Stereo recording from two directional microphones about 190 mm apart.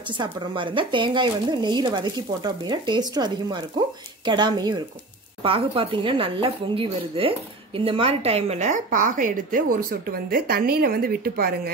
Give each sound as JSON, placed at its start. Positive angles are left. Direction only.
{"t": 0.2, "sound": "a woman's voice", "side_deg": -25}